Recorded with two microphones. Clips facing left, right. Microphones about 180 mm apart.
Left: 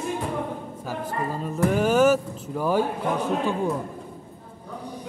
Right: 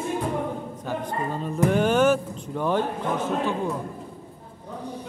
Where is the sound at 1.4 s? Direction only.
5° left (ahead or behind).